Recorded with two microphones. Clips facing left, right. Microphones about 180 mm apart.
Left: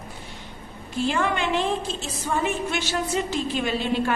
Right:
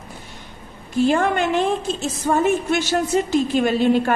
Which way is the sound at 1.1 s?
45° right (ahead or behind).